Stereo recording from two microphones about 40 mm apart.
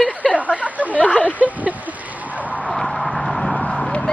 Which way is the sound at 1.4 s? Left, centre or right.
Right.